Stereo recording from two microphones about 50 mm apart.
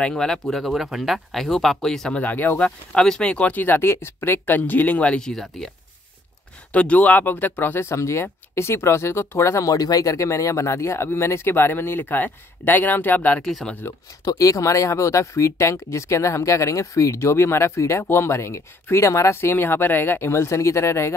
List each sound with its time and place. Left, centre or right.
0.0 s speech: centre
0.6 s speech: centre
2.1 s speech: left
2.6 s speech: centre
3.6 s speech: left
5.2 s speech: centre
6.7 s speech: left
7.8 s speech: left
10.1 s speech: left
11.4 s speech: left
13.4 s speech: centre
14.6 s speech: left
19.3 s speech: left